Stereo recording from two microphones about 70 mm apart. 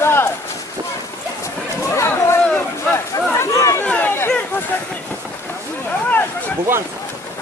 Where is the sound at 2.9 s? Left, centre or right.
Left.